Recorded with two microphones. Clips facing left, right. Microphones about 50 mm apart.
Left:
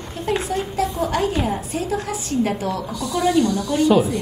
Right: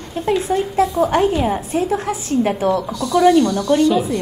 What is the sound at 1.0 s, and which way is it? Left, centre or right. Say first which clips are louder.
A woman's voice: right 5 dB; right.